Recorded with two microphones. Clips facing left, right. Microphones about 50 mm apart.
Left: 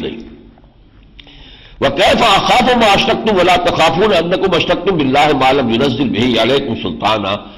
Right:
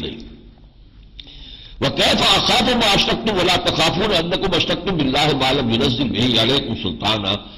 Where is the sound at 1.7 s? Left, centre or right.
Left.